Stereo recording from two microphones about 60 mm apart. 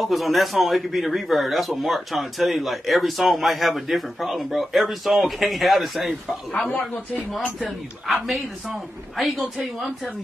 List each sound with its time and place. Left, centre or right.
0.0 s a man's voice: centre
9.1 s a man's voice: centre